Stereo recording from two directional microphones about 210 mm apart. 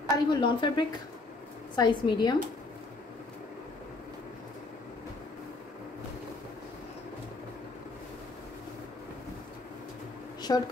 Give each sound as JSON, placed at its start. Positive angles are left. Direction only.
{"t": 0.1, "sound": "a woman's voice", "side_deg": 20}
{"t": 10.5, "sound": "a woman's voice", "side_deg": 20}